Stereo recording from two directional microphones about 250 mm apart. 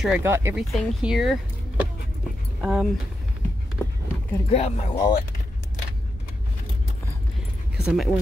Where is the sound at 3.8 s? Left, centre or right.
Centre.